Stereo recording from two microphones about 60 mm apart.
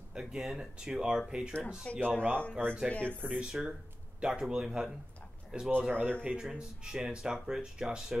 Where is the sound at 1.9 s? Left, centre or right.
Left.